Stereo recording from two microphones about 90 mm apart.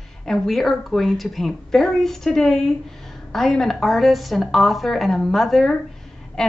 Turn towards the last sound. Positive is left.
turn(degrees=5)  # may be behind; listen again after turning